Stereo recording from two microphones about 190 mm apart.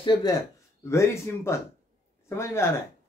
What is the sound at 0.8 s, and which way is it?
Speech, 15° left (ahead or behind).